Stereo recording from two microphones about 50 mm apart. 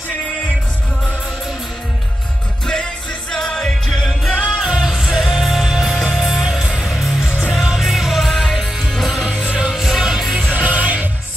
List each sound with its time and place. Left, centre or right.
2.6 s music: centre
4.5 s music: centre
9.3 s music: centre
10.5 s music: right